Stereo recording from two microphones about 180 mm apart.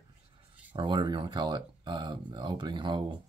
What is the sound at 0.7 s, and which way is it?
Speech, 25° right (ahead or behind).